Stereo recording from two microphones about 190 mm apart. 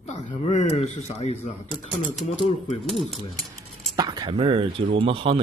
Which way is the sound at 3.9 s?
20° right (ahead or behind).